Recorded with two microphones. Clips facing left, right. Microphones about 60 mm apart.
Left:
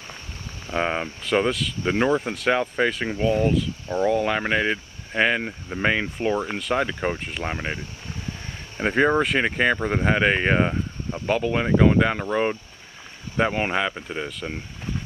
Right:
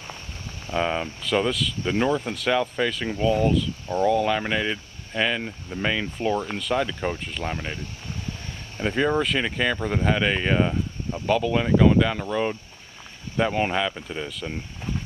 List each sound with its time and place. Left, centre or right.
0.7 s speech: left
6.1 s speech: centre